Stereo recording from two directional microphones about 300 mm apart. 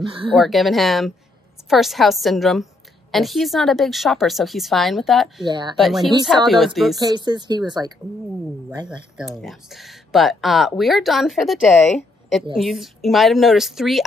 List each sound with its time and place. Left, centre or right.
0.0 s speech: centre
0.4 s a woman's voice: centre
5.4 s speech: centre
5.8 s a woman's voice: centre
7.0 s speech: centre
9.4 s a woman's voice: centre
12.5 s a woman's voice: centre